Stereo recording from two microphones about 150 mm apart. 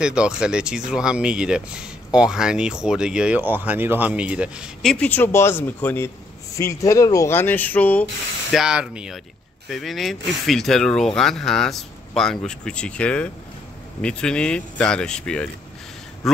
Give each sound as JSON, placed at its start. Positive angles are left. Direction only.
{"t": 0.0, "sound": "speech", "side_deg": -5}
{"t": 4.8, "sound": "speech", "side_deg": 10}
{"t": 8.5, "sound": "speech", "side_deg": -5}